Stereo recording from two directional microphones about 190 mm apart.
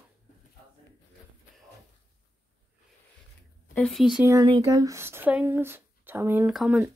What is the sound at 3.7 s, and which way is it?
Speech, 5° left (ahead or behind).